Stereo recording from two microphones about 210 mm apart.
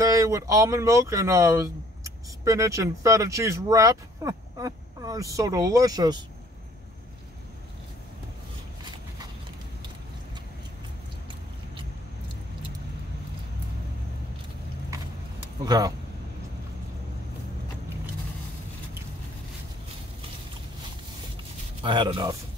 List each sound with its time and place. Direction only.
0.0 s speech: 15° right (ahead or behind)
15.6 s a man's voice: 20° right (ahead or behind)
21.8 s a man's voice: 20° right (ahead or behind)